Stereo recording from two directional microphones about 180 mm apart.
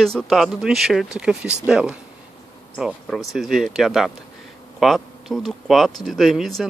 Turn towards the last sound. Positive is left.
turn(degrees=0)  # may be behind; listen again after turning